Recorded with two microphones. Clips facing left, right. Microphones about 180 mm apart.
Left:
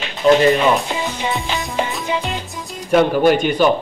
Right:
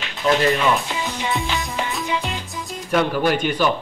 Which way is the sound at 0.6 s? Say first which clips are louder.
Left 4 dB; 20° left (ahead or behind).